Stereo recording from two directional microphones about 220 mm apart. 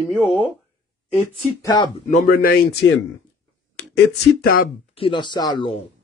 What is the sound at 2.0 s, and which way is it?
Speech, 40° left (ahead or behind).